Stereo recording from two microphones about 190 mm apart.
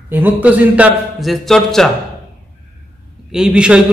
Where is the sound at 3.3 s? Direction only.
5° right (ahead or behind).